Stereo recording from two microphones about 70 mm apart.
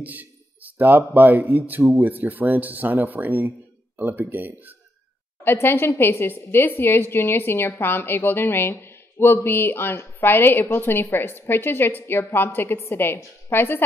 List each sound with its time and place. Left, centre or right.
0.0 s speech: right
5.4 s a woman's voice: left